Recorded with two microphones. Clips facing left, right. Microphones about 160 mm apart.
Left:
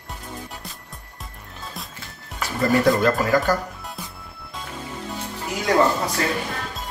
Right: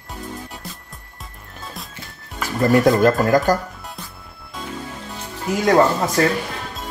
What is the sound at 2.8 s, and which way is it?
Speech, 45° right (ahead or behind).